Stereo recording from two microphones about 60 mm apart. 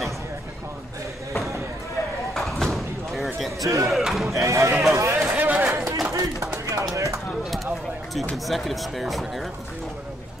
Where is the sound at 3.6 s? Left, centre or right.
Right.